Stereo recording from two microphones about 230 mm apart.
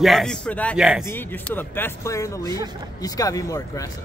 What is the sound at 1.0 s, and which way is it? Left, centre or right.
A man's voice, centre.